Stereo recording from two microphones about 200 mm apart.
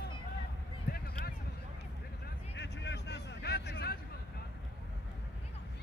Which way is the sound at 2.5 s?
60° left (ahead or behind).